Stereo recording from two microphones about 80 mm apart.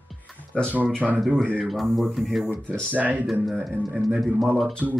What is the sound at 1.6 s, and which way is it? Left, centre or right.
Speech, centre.